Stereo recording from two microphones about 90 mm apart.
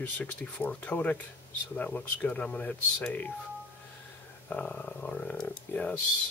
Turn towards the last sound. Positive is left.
turn(degrees=15)  # may be behind; listen again after turning